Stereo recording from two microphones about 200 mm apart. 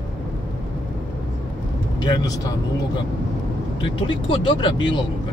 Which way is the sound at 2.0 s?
20° left (ahead or behind).